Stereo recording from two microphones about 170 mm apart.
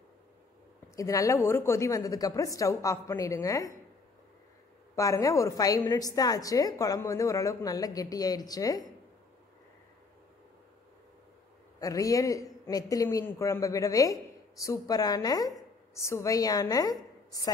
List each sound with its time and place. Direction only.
0.9 s a woman's voice: 20° left (ahead or behind)
4.9 s a woman's voice: 20° left (ahead or behind)
11.8 s a woman's voice: 20° left (ahead or behind)